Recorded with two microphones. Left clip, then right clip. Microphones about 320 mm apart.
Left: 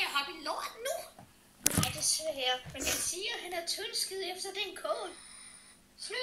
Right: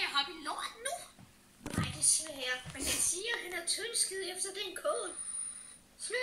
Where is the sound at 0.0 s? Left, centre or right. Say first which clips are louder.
Left 1 dB; centre.